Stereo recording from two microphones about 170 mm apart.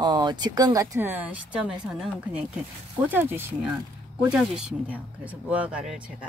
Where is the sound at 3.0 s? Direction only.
10° right (ahead or behind).